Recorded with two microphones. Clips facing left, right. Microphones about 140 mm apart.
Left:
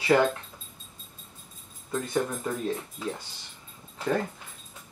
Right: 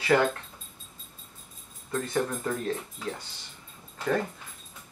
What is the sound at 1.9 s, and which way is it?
Speech, 10° left (ahead or behind).